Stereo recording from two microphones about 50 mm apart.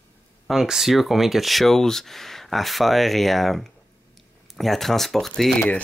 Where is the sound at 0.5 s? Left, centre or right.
Centre.